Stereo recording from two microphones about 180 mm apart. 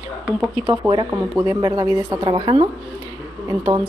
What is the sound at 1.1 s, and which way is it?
Speech, 10° right (ahead or behind).